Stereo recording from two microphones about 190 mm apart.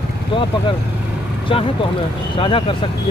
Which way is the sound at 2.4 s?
25° left (ahead or behind).